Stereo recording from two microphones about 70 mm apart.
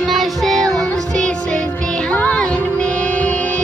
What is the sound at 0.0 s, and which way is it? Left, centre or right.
Music, centre.